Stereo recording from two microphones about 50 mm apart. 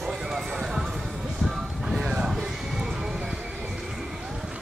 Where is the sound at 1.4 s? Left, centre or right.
Centre.